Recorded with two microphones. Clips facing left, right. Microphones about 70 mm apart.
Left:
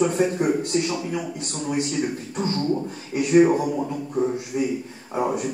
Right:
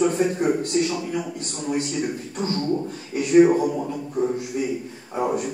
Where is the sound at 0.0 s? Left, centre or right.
Centre.